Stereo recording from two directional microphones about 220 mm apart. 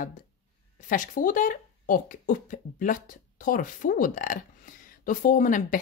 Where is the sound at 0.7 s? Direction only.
35° left (ahead or behind).